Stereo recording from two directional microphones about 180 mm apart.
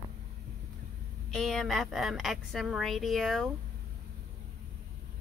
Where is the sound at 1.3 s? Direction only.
Centre (ahead or behind).